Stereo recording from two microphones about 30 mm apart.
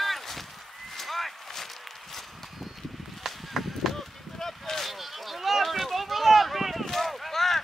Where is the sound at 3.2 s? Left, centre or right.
Centre.